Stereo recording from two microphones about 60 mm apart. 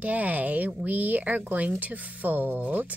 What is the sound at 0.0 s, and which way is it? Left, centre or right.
Speech, right.